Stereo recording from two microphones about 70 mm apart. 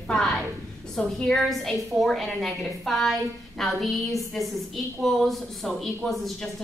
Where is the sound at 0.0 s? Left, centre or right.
Centre.